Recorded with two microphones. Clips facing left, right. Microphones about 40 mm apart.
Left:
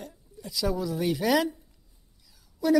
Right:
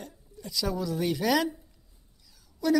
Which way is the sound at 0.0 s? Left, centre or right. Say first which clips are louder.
Left 1 dB; centre.